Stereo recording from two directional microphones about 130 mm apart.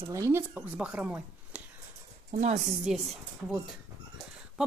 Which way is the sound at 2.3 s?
65° right (ahead or behind).